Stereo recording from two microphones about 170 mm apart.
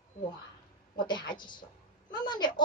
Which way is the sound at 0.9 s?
25° left (ahead or behind).